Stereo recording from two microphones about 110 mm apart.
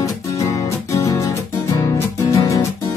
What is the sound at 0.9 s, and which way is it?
Music, 30° left (ahead or behind).